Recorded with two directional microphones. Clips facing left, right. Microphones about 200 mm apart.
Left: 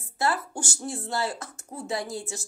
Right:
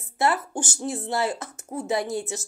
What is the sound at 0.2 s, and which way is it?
A woman's voice, 20° right (ahead or behind).